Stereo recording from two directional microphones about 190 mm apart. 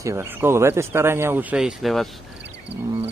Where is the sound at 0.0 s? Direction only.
15° right (ahead or behind).